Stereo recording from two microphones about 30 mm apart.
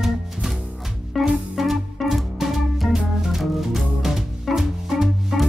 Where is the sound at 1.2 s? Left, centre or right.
Centre.